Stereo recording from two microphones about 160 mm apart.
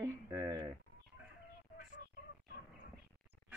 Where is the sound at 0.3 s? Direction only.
25° right (ahead or behind).